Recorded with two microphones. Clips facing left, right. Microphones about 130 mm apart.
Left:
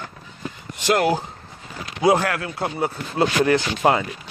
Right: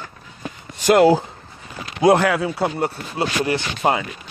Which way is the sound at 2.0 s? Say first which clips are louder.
Right 4 dB; 70° right (ahead or behind).